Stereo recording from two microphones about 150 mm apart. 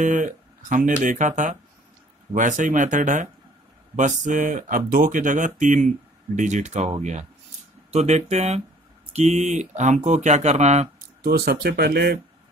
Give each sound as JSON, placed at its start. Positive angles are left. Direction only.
{"t": 0.0, "sound": "speech", "side_deg": -55}
{"t": 11.2, "sound": "speech", "side_deg": -90}